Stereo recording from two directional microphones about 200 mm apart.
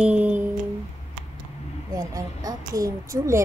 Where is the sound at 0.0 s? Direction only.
5° right (ahead or behind).